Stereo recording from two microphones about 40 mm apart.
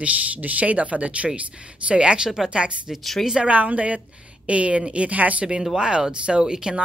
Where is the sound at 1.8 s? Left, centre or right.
Right.